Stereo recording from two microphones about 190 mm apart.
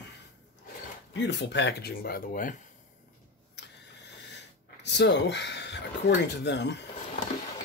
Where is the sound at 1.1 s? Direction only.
70° left (ahead or behind); by 2.6 s 45° left (ahead or behind).